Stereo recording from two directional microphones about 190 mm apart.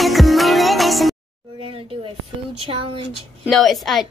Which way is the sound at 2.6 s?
25° right (ahead or behind).